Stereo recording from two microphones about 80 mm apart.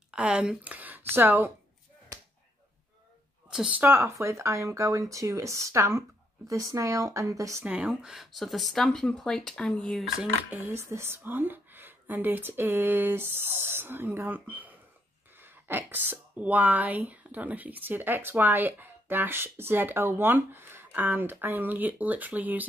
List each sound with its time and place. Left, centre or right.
0.1 s speech: centre; by 1.5 s right
3.5 s speech: centre
3.8 s speech: right
7.6 s speech: centre
10.5 s speech: right
14.5 s a sound: right
15.3 s speech: right